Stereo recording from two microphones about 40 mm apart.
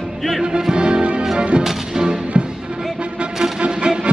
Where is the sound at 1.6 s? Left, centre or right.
Centre.